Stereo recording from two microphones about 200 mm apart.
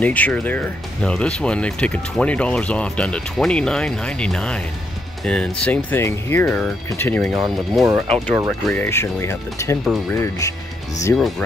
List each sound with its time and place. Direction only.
0.0 s speech: 5° left (ahead or behind)
11.1 s speech: centre (ahead or behind)